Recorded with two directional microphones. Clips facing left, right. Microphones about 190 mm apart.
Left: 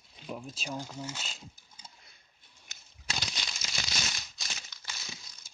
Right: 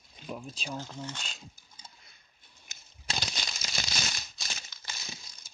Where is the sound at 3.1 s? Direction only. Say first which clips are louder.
Right 2 dB; 40° right (ahead or behind).